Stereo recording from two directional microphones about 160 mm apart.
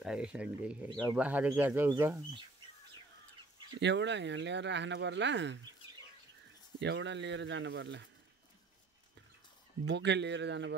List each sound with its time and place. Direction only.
0.0 s speech: 5° right (ahead or behind)
3.8 s speech: 90° right
6.8 s speech: 90° right
9.8 s speech: 90° right